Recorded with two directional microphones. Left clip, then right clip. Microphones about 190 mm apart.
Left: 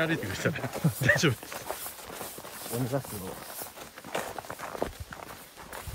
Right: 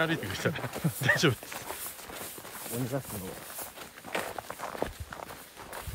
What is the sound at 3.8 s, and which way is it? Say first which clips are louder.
Walk: even; centre (ahead or behind).